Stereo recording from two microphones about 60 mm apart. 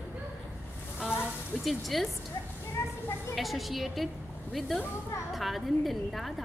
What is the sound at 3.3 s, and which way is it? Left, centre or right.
A woman's voice, centre.